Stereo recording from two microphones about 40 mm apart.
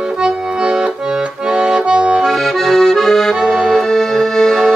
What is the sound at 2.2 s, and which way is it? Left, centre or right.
Accordion, centre.